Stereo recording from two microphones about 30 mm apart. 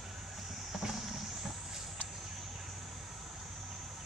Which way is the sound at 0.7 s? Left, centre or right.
Centre.